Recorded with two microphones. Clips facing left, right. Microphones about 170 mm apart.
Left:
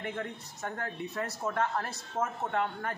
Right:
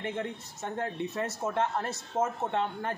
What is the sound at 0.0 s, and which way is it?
A man's voice, 20° right (ahead or behind).